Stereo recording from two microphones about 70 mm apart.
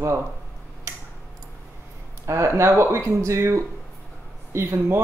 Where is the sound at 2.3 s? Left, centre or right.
Right.